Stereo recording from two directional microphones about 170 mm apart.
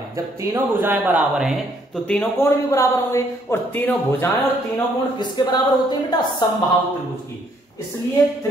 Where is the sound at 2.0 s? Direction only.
10° left (ahead or behind).